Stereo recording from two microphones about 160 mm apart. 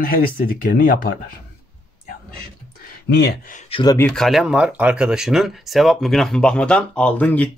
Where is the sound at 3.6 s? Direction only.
35° left (ahead or behind).